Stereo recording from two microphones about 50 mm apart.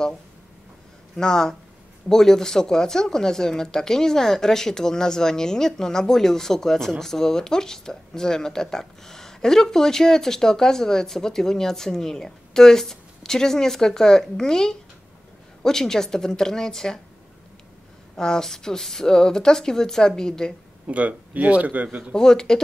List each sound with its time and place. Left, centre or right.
1.1 s speech: centre
18.1 s speech: centre
20.8 s speech: right
22.1 s speech: centre